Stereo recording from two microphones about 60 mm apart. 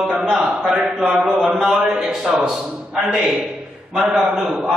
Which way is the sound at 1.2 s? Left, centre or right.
Centre.